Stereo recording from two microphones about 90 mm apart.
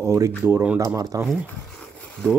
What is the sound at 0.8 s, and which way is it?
Speech, 40° right (ahead or behind).